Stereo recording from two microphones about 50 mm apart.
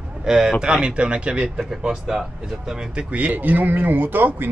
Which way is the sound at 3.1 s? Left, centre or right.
Right.